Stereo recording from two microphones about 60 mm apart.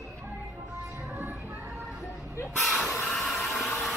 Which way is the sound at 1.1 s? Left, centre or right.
Right.